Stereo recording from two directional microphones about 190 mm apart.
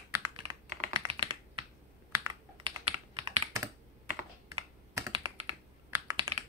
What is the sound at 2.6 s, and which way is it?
Computer keyboard, 30° right (ahead or behind).